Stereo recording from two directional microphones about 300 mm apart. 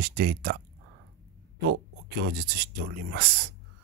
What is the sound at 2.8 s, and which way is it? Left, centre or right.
Speech, right.